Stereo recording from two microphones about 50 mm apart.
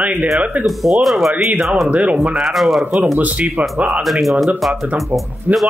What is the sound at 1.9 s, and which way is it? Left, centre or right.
Speech, right.